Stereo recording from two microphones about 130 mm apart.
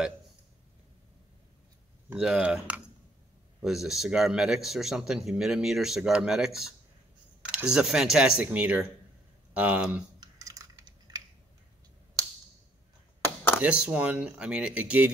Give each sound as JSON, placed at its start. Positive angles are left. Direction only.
{"t": 2.1, "sound": "speech", "side_deg": -5}
{"t": 10.2, "sound": "typing", "side_deg": -30}
{"t": 12.2, "sound": "a sound", "side_deg": -25}
{"t": 13.6, "sound": "speech", "side_deg": -10}